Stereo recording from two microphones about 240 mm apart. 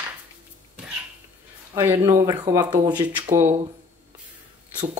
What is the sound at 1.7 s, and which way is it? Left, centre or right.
Speech, centre.